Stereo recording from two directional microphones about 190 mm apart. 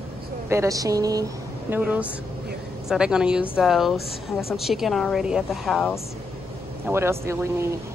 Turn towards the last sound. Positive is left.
turn(degrees=-15)  # may be behind; listen again after turning